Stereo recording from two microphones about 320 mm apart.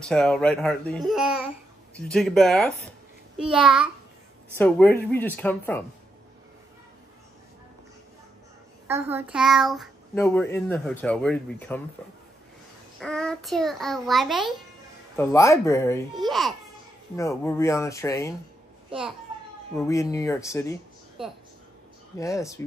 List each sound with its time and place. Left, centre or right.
0.0 s a child's voice: centre
8.8 s a child's voice: centre
19.7 s speech: centre
22.2 s speech: centre